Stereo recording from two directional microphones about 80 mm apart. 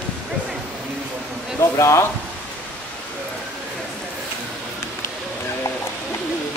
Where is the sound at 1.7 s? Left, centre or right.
Left.